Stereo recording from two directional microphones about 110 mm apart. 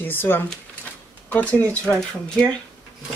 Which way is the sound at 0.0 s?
20° left (ahead or behind).